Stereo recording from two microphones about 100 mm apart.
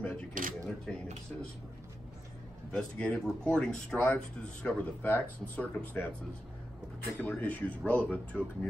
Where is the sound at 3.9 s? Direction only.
15° left (ahead or behind).